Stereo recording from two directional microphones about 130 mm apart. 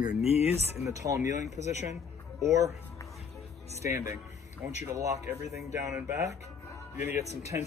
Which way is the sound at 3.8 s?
25° right (ahead or behind).